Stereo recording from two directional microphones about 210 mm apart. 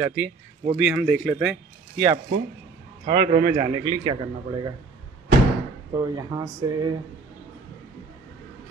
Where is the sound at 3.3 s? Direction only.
25° right (ahead or behind).